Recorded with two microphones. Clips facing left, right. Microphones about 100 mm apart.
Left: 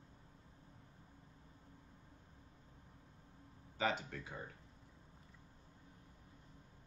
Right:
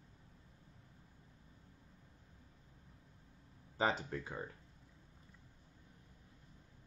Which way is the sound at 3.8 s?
35° right (ahead or behind).